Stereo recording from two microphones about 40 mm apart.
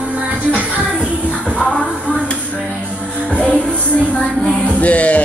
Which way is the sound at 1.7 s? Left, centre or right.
Right.